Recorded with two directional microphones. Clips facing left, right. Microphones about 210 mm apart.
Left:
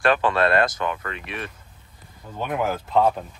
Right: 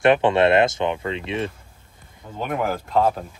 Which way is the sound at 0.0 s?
25° right (ahead or behind).